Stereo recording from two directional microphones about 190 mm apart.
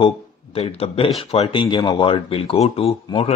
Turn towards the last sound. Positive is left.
turn(degrees=30)  # may be behind; listen again after turning